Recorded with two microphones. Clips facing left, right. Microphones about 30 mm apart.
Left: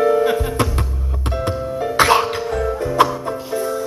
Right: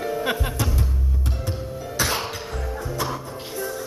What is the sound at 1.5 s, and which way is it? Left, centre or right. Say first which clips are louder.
Music: left 10 dB; left.